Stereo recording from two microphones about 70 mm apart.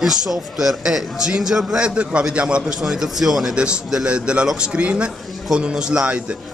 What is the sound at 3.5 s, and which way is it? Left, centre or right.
A man's voice, centre.